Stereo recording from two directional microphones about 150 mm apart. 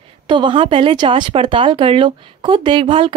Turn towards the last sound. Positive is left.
turn(degrees=-35)  # may be behind; listen again after turning